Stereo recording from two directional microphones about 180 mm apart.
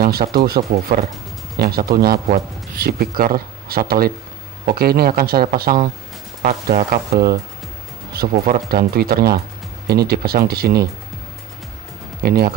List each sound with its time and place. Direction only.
0.0 s a man's voice: 55° right (ahead or behind)
12.2 s a man's voice: 60° right (ahead or behind)